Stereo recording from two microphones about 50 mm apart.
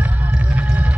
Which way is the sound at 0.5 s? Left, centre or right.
Right.